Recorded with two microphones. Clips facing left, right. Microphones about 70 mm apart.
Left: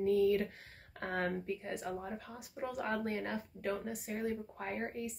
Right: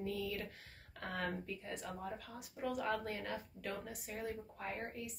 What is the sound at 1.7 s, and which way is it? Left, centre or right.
Speech, left.